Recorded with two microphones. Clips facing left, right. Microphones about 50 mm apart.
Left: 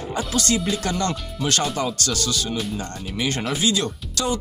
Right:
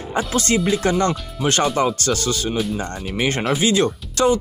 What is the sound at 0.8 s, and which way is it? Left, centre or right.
Speech, right.